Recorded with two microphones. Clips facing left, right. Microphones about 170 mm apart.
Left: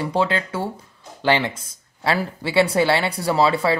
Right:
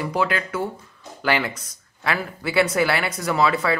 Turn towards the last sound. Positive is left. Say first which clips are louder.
# left 2 dB
turn(degrees=30)  # may be behind; listen again after turning